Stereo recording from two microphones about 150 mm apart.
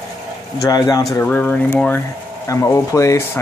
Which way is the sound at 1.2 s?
10° left (ahead or behind).